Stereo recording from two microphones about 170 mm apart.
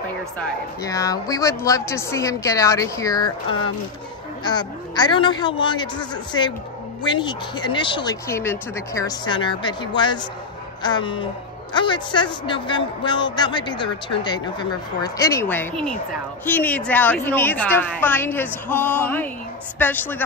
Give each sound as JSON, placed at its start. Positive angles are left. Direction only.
{"t": 0.8, "sound": "a woman's voice", "side_deg": 20}
{"t": 7.0, "sound": "a woman's voice", "side_deg": 25}